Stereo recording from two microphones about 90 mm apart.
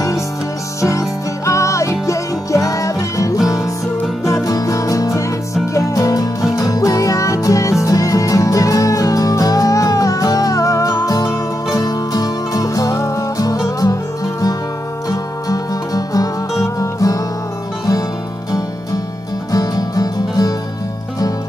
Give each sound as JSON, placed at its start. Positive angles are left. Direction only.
{"t": 0.7, "sound": "music", "side_deg": 35}
{"t": 19.5, "sound": "music", "side_deg": 45}